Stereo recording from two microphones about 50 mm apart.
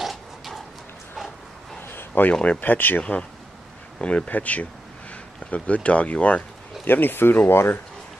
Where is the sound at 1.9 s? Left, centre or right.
Left.